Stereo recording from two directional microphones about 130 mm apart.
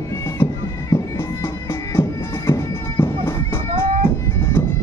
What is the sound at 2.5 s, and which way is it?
Bagpipes, 20° left (ahead or behind).